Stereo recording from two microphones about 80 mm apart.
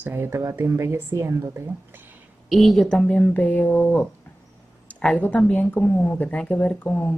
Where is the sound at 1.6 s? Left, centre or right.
Right.